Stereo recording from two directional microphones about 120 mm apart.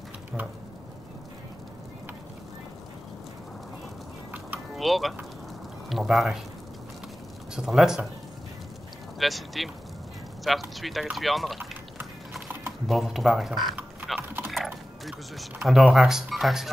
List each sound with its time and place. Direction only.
4.7 s speech: centre (ahead or behind)
7.5 s speech: 5° right (ahead or behind)
9.2 s speech: centre (ahead or behind)
12.0 s clip-clop: 15° right (ahead or behind)
12.8 s speech: centre (ahead or behind)